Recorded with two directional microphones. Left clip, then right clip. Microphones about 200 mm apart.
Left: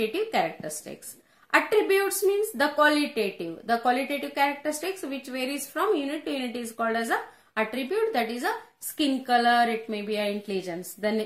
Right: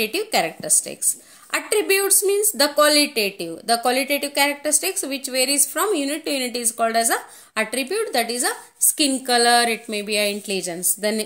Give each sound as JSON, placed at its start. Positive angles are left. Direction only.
{"t": 0.0, "sound": "speech", "side_deg": -45}